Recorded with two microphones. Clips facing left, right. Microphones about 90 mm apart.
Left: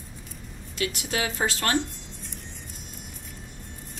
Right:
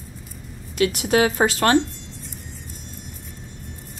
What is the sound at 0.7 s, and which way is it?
Speech, 60° right (ahead or behind).